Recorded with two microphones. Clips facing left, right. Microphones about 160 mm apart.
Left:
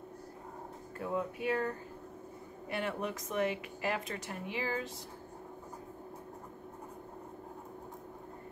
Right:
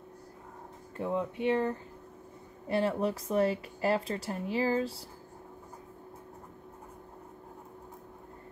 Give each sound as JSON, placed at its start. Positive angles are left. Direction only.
{"t": 0.9, "sound": "speech", "side_deg": -25}
{"t": 2.7, "sound": "speech", "side_deg": -35}